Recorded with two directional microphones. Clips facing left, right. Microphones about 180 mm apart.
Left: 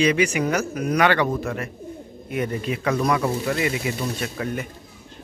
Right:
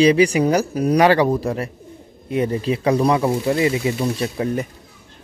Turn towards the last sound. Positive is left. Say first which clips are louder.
# right 6 dB
turn(degrees=-30)  # may be behind; listen again after turning